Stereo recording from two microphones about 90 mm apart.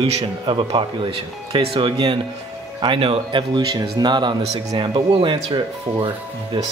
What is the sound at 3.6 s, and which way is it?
Speech, 50° right (ahead or behind).